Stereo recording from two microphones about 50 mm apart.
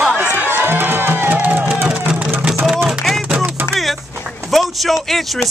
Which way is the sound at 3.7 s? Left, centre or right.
Centre.